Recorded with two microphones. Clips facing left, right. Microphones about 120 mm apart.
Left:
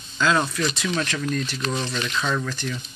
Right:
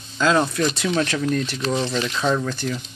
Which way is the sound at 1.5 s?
25° right (ahead or behind).